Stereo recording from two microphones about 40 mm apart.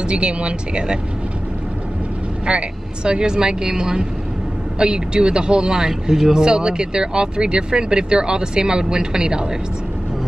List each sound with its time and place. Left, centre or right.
0.0 s speech: right
2.4 s speech: right
5.8 s speech: centre